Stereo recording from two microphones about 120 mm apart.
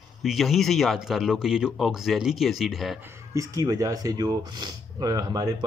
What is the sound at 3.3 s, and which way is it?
Speech, 30° right (ahead or behind).